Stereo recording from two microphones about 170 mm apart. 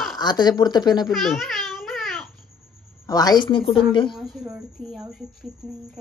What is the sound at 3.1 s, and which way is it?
Speech, 20° left (ahead or behind).